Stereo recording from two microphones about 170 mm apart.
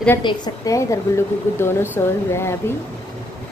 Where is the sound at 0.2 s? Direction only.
25° left (ahead or behind).